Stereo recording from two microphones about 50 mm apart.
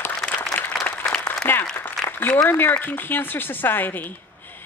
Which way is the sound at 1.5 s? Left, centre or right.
Left.